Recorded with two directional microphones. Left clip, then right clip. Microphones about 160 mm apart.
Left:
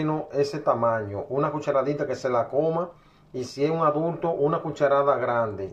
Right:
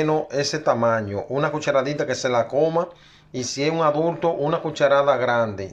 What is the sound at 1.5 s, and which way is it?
Speech, centre (ahead or behind).